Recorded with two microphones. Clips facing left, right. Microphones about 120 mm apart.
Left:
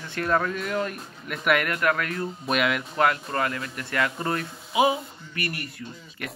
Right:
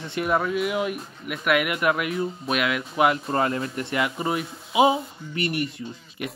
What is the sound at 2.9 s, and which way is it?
Speech, 20° right (ahead or behind).